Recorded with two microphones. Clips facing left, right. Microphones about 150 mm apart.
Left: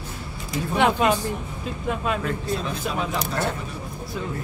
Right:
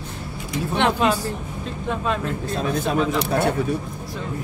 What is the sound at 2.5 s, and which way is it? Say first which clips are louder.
Speech: right 4 dB; 55° right (ahead or behind).